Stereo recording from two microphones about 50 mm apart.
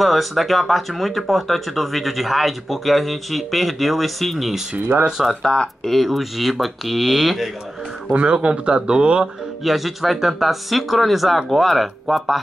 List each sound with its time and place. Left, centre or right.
0.0 s speech: centre
4.7 s speech: right
5.0 s speech: centre
5.4 s speech: centre
5.9 s speech: centre
8.1 s speech: right
9.6 s speech: centre